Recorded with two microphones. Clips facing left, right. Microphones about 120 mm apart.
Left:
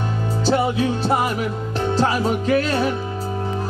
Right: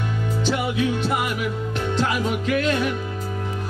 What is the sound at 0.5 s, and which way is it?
Music, 35° left (ahead or behind).